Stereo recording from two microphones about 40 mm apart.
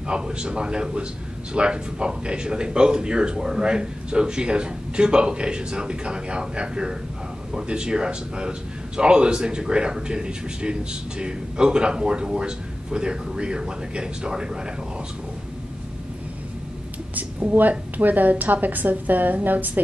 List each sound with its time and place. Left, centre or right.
0.1 s a man's voice: right
17.1 s a woman's voice: right